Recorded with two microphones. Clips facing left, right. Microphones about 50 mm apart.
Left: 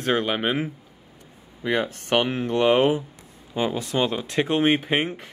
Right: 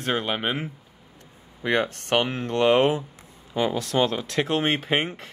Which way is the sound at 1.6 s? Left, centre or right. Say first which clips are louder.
Right 1 dB; right.